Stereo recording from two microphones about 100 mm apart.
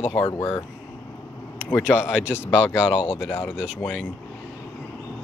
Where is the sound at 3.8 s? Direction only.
10° left (ahead or behind).